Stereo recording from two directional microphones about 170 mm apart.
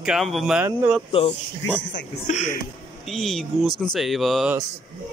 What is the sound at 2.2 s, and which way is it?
Speech, 45° left (ahead or behind).